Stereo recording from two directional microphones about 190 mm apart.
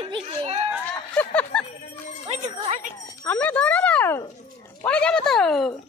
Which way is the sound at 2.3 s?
40° right (ahead or behind).